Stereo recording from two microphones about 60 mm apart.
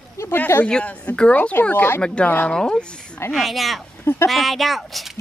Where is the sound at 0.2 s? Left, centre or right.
Left.